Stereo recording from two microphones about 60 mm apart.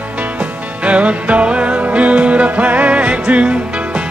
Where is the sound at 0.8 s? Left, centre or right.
Right.